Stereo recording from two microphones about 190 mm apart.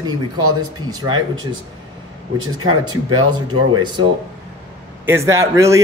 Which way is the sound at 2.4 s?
90° right.